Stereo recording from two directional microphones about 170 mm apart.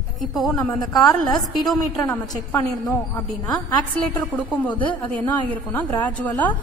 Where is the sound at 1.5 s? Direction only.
Centre (ahead or behind).